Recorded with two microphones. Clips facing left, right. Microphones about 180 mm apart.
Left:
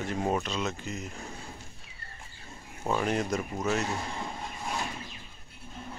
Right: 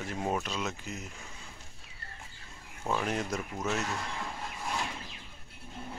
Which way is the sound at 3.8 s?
25° left (ahead or behind).